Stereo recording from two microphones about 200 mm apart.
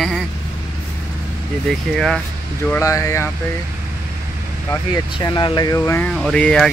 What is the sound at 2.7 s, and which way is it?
Speech, 15° left (ahead or behind).